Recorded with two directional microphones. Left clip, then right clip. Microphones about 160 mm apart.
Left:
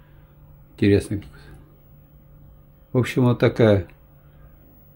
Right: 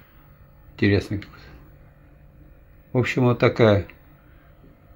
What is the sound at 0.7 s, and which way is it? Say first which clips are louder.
Speech: left 2 dB; 45° left (ahead or behind).